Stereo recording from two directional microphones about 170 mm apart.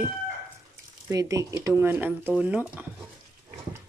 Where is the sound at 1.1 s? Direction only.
20° right (ahead or behind).